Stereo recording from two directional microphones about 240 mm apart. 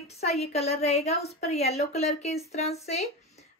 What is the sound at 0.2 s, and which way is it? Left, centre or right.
A woman's voice, left.